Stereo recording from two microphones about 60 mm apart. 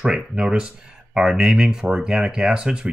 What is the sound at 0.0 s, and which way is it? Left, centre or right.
Speech, centre.